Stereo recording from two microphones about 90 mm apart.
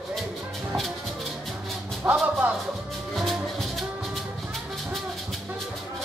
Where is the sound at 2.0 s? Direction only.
20° right (ahead or behind).